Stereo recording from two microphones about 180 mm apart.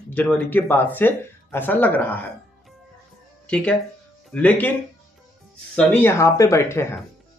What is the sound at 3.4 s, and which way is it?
Speech, 5° left (ahead or behind).